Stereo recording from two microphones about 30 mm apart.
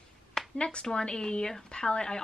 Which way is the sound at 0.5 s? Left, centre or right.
Left.